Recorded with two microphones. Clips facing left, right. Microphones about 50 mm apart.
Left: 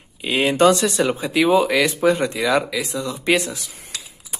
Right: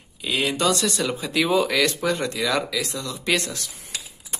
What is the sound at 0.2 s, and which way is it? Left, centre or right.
Speech, left.